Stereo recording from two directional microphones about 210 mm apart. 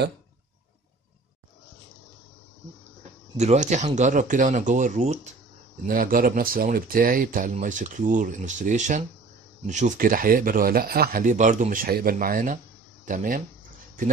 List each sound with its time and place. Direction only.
3.3 s speech: 35° right (ahead or behind)